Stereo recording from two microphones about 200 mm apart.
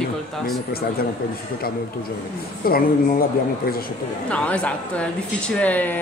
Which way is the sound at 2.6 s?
50° left (ahead or behind).